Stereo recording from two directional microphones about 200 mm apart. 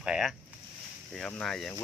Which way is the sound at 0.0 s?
Centre (ahead or behind).